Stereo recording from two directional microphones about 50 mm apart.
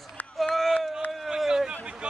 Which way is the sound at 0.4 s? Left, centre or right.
Centre.